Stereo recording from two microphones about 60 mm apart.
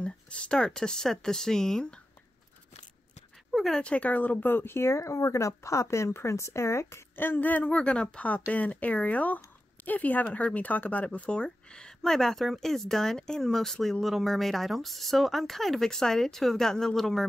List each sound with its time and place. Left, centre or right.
0.0 s speech: centre
3.5 s a sound: centre
3.8 s speech: left
7.2 s speech: left; by 17.2 s centre